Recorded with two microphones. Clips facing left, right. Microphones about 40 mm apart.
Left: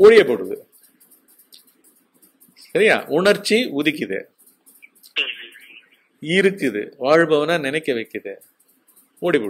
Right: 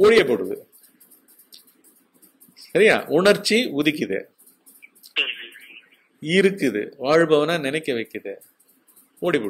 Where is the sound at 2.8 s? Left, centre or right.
Centre.